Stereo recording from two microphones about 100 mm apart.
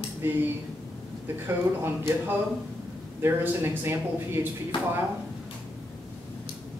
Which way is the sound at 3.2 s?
25° right (ahead or behind).